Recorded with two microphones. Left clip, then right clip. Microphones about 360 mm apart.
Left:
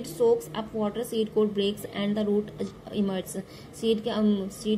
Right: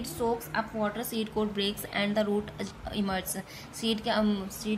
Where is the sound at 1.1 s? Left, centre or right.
Right.